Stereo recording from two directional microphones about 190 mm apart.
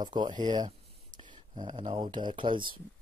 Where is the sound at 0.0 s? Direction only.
20° right (ahead or behind).